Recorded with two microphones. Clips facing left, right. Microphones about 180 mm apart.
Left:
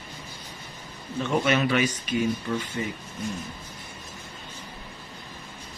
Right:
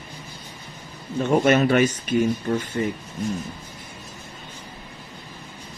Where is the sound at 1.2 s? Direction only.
50° right (ahead or behind).